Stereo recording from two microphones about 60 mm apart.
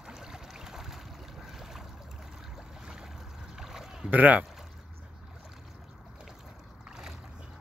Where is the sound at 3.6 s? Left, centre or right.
Centre.